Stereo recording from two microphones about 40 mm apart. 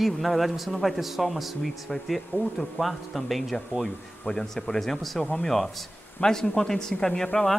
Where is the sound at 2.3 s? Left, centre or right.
Left.